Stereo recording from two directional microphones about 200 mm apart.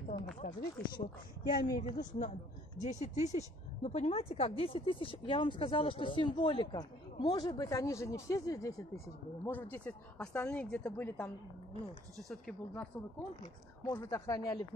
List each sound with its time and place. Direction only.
0.4 s a sound: 45° left (ahead or behind)
0.7 s speech: 20° left (ahead or behind)
1.8 s a woman's voice: 40° left (ahead or behind); by 12.8 s centre (ahead or behind)
13.8 s a woman's voice: 15° left (ahead or behind)